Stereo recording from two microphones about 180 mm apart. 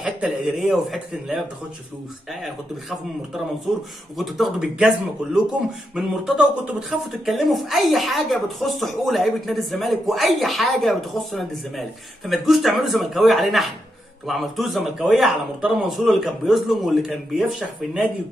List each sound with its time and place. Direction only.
0.0 s speech: 5° right (ahead or behind)
2.4 s speech: centre (ahead or behind)